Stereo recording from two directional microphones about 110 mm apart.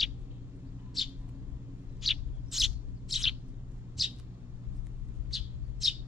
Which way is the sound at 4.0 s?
Centre (ahead or behind).